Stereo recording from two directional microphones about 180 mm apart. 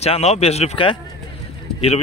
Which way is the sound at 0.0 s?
35° left (ahead or behind).